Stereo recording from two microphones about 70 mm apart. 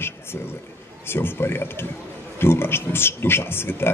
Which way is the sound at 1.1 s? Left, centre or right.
Left.